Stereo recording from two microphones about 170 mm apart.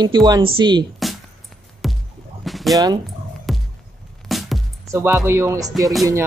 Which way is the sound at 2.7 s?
20° right (ahead or behind).